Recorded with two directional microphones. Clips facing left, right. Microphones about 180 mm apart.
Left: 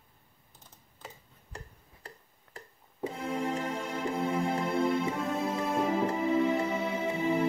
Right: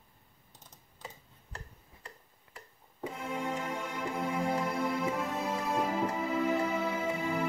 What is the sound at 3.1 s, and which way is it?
Music, 35° left (ahead or behind).